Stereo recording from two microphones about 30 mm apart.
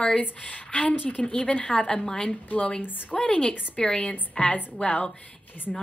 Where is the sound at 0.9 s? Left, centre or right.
Left.